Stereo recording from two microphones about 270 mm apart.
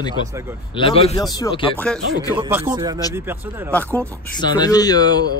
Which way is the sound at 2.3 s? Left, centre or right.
Centre.